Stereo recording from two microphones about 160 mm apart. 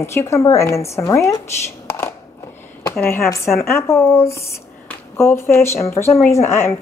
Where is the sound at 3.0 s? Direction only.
15° left (ahead or behind).